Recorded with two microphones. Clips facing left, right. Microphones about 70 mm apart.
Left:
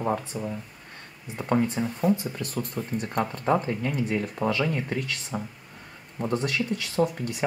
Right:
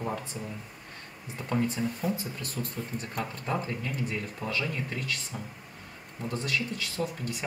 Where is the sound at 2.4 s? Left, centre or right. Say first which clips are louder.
Left 5 dB; left.